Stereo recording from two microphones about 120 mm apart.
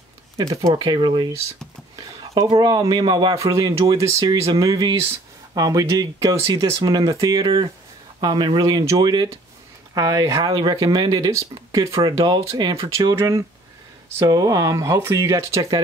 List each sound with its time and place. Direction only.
0.7 s speech: 35° right (ahead or behind)